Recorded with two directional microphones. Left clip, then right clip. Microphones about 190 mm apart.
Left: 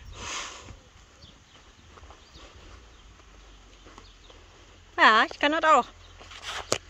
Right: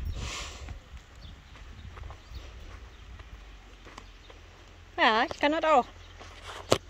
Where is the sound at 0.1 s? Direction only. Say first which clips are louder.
Left 4 dB; 20° left (ahead or behind).